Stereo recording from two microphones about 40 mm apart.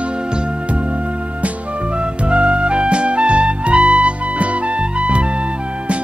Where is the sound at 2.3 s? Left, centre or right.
Right.